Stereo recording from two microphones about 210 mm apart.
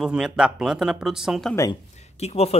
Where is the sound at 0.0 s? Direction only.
5° right (ahead or behind).